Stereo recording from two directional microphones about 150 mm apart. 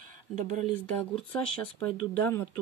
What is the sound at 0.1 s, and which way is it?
Speech, 50° right (ahead or behind).